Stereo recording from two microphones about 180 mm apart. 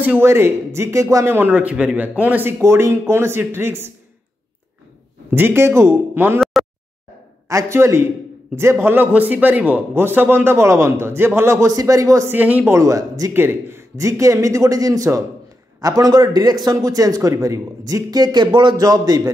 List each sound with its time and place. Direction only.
0.0 s a man's voice: 10° right (ahead or behind)
5.3 s a man's voice: 10° right (ahead or behind)
7.4 s a man's voice: 15° right (ahead or behind)